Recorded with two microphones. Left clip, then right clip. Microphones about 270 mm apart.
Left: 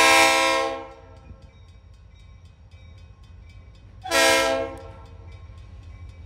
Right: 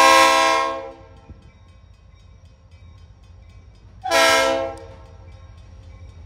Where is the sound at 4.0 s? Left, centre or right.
Centre.